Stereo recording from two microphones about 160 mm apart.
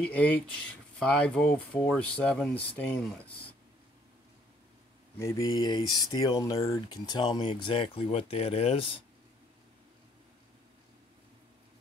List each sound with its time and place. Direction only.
0.0 s speech: 10° left (ahead or behind)
5.1 s speech: 20° left (ahead or behind); by 8.8 s 40° left (ahead or behind)